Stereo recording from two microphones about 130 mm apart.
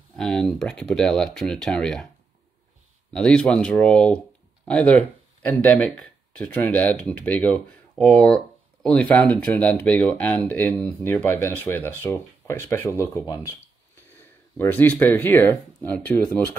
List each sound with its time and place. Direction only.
0.1 s speech: 5° left (ahead or behind)
3.1 s speech: 5° left (ahead or behind)
14.6 s speech: 15° left (ahead or behind)